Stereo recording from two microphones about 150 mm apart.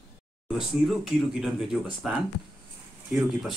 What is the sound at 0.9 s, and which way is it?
Speech, centre (ahead or behind).